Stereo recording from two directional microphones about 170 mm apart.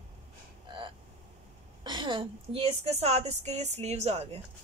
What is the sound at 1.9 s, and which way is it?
Speech, 30° right (ahead or behind).